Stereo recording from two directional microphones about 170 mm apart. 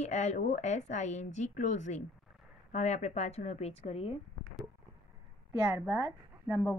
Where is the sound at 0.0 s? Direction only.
40° left (ahead or behind).